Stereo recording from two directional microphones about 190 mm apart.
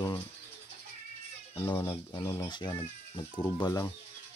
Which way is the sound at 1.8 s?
15° left (ahead or behind).